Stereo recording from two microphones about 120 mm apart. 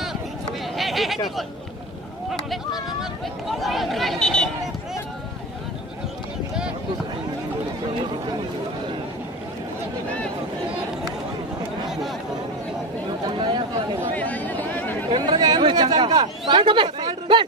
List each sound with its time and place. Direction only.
0.7 s speech: centre (ahead or behind)
3.0 s speech: centre (ahead or behind)
13.3 s speech: 40° right (ahead or behind)
14.1 s a sound: 15° left (ahead or behind)
15.0 s speech: 40° right (ahead or behind)